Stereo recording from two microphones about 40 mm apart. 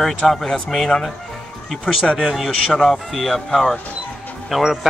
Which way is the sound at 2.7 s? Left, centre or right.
Centre.